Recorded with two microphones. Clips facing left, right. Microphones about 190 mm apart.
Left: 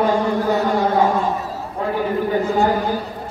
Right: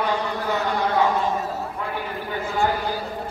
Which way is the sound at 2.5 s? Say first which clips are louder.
Left 3 dB; 40° left (ahead or behind).